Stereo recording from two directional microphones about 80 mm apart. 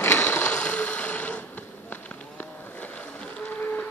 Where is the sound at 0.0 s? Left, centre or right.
Left.